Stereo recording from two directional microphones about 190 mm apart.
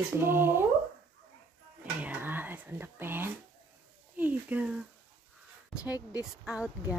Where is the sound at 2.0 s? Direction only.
10° right (ahead or behind).